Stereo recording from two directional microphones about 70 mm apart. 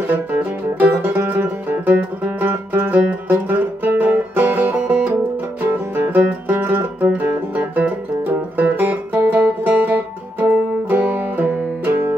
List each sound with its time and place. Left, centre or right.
0.1 s music: right